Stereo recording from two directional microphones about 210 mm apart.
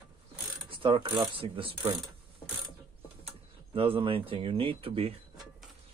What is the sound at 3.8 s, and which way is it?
Speech, 25° right (ahead or behind).